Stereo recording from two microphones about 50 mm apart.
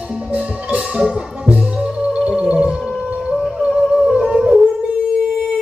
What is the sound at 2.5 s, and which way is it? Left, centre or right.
Music, centre.